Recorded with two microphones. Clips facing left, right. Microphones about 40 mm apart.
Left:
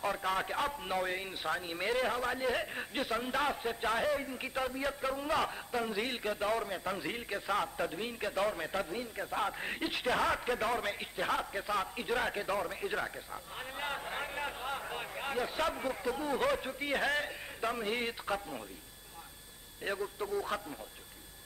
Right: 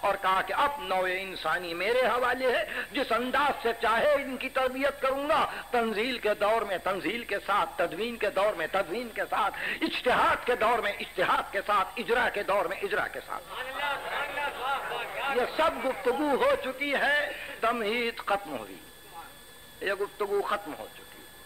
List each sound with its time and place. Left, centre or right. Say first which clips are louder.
0.0 s a man's voice: right 7 dB; right
19.8 s a man's voice: right 6 dB; right